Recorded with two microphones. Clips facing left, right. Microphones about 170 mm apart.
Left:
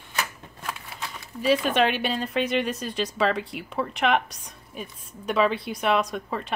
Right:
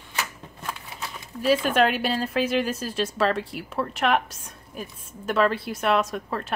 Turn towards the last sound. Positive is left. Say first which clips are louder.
# right 1 dB
turn(degrees=0)  # may be behind; listen again after turning